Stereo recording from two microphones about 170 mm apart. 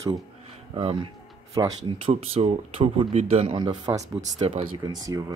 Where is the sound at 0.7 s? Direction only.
30° right (ahead or behind).